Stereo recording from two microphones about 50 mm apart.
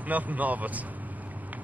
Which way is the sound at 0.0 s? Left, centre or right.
Right.